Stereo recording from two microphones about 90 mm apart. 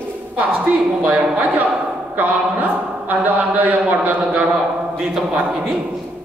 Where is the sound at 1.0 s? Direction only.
15° right (ahead or behind).